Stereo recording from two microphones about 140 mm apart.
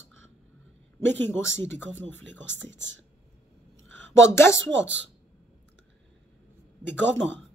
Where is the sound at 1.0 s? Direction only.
20° left (ahead or behind).